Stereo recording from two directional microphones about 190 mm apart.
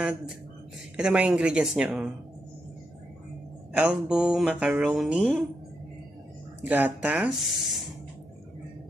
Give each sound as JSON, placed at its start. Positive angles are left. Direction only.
{"t": 0.9, "sound": "speech", "side_deg": -5}
{"t": 3.7, "sound": "speech", "side_deg": -5}
{"t": 6.6, "sound": "speech", "side_deg": -10}